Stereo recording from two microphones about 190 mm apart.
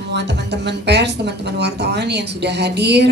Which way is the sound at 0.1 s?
65° right (ahead or behind).